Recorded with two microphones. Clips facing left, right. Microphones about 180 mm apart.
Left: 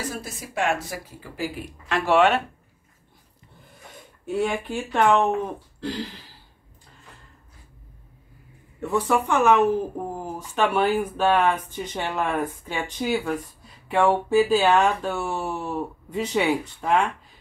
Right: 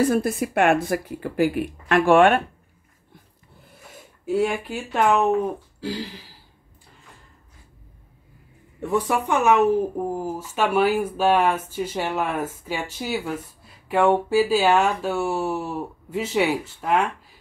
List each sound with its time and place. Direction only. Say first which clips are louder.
0.0 s speech: right 13 dB; 55° right (ahead or behind)
4.3 s speech: right 2 dB; 5° right (ahead or behind)
8.9 s speech: even; 15° right (ahead or behind)